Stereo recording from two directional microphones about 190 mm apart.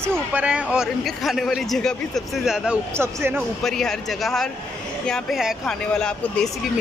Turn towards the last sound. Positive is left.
turn(degrees=5)  # may be behind; listen again after turning